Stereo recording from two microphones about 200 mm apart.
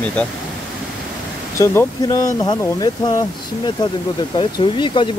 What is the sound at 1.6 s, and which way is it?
Speech, 15° left (ahead or behind).